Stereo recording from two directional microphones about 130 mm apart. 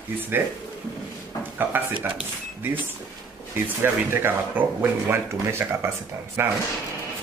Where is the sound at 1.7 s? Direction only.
15° right (ahead or behind).